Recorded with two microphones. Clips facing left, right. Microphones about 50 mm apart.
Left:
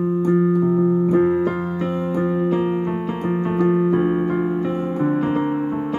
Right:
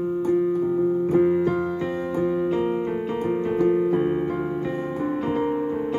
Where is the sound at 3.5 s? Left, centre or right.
Centre.